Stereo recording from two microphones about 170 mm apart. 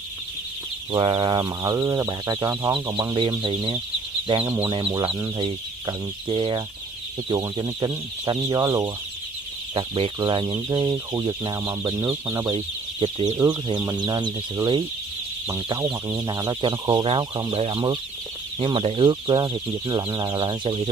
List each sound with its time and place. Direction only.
0.9 s speech: 30° right (ahead or behind)